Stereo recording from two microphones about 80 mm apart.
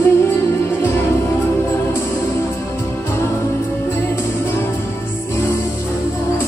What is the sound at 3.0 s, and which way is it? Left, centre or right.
Music, left.